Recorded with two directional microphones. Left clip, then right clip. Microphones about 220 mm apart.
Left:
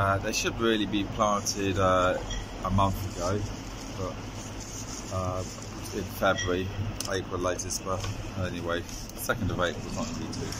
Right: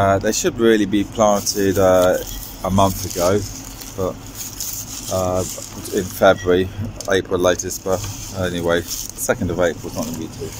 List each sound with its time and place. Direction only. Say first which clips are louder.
0.0 s speech: right 10 dB; 35° right (ahead or behind)